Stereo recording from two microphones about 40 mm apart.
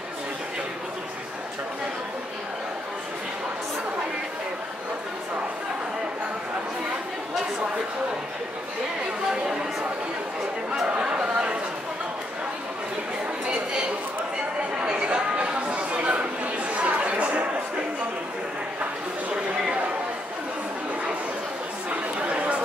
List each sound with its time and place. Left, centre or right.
10.9 s chatter: right
14.9 s chatter: right
19.3 s a sound: right
22.2 s chatter: right